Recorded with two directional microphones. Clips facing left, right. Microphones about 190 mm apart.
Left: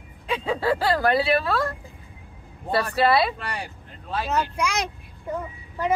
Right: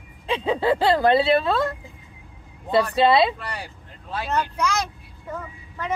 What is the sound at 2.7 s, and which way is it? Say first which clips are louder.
Speech: right 3 dB; 20° right (ahead or behind).